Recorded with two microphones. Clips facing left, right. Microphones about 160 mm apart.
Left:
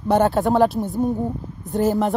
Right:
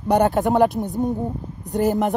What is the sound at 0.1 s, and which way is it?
Speech, 20° right (ahead or behind).